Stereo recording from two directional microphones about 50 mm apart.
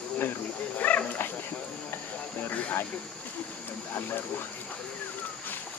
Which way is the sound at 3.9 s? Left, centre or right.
Left.